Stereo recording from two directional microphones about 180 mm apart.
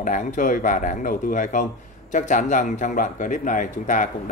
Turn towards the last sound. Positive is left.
turn(degrees=45)  # may be behind; listen again after turning